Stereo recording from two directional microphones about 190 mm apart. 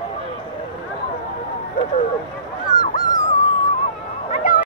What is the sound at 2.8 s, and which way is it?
Dog, 45° left (ahead or behind).